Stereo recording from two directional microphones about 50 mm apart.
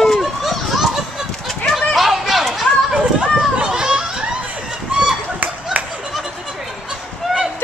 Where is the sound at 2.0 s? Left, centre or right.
Centre.